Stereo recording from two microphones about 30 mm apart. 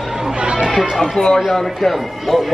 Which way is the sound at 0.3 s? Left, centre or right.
Right.